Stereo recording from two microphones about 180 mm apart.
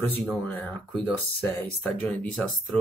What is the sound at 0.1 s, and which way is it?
Speech, 10° left (ahead or behind).